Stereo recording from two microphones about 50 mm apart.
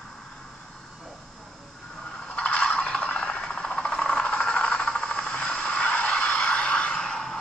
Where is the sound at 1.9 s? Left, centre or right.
Centre.